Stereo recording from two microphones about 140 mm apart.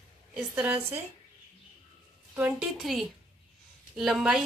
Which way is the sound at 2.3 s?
10° right (ahead or behind).